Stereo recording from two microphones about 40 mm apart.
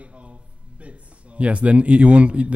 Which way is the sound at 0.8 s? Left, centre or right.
Right.